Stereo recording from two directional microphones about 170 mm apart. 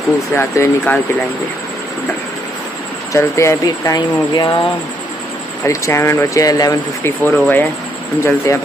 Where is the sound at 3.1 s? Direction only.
15° left (ahead or behind).